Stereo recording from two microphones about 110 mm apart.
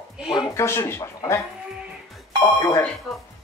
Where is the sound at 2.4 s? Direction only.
30° left (ahead or behind).